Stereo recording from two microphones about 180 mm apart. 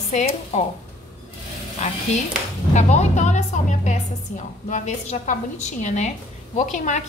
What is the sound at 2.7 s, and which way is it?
A woman's voice, 40° left (ahead or behind).